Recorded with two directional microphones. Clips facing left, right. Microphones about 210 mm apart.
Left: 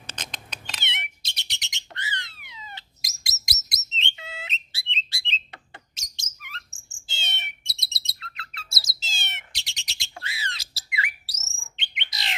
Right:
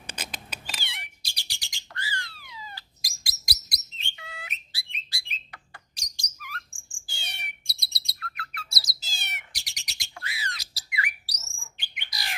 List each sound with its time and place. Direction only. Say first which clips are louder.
0.0 s cat: right 1 dB; 10° right (ahead or behind)
0.8 s bird: left 5 dB; 20° left (ahead or behind)